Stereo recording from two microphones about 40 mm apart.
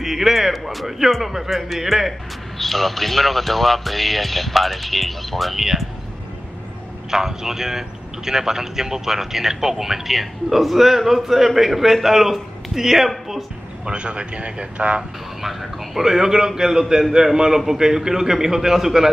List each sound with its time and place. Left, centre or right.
0.0 s speech: centre
2.6 s speech: centre
7.1 s a man's voice: centre
13.8 s speech: right
15.0 s a man's voice: centre